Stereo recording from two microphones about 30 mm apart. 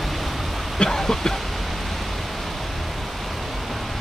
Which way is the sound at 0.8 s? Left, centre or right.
Centre.